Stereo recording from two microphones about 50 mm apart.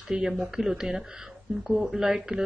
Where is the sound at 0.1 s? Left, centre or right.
Right.